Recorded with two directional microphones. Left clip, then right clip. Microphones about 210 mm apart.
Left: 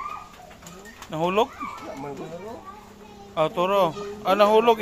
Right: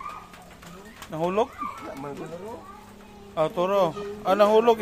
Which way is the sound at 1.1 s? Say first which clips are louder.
Left 2 dB; 20° left (ahead or behind).